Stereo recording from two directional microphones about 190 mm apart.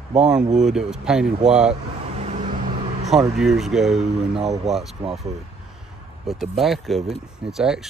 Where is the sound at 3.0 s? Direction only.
Centre (ahead or behind).